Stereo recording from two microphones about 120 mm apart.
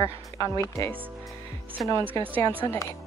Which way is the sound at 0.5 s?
25° left (ahead or behind).